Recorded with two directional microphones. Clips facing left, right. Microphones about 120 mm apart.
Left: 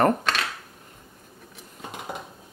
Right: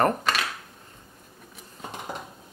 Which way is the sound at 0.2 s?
5° right (ahead or behind).